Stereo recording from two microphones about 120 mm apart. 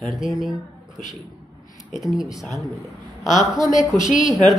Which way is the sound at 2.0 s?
5° right (ahead or behind).